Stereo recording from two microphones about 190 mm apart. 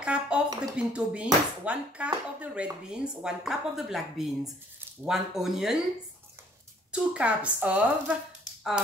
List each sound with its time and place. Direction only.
0.0 s a sound: 5° right (ahead or behind)
0.7 s speech: 5° right (ahead or behind)
6.9 s speech: 5° right (ahead or behind)